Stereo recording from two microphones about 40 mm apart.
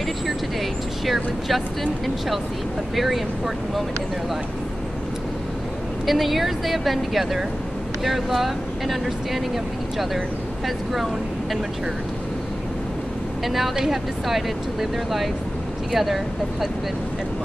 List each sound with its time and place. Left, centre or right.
1.0 s speech: centre
6.0 s speech: centre
13.5 s speech: centre